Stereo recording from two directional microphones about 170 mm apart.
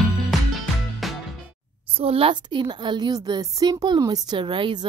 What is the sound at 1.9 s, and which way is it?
A woman's voice, 35° right (ahead or behind).